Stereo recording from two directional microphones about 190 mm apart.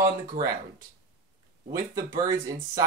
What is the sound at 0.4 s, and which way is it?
Speech, 45° right (ahead or behind).